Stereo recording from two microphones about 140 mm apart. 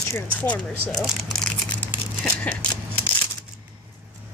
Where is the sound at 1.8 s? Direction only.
10° left (ahead or behind).